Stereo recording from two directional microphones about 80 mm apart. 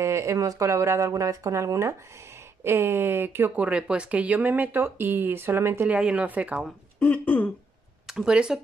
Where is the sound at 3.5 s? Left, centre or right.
Centre.